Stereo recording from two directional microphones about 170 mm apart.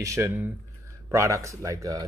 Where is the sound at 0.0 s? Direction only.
15° right (ahead or behind).